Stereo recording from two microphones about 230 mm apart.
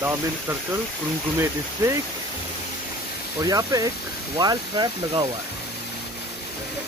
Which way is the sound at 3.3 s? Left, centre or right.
Centre.